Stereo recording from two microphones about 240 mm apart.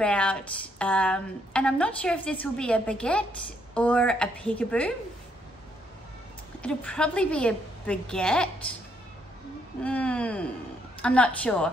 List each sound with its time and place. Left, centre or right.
0.0 s a woman's voice: centre
6.6 s a woman's voice: centre
9.8 s a woman's voice: centre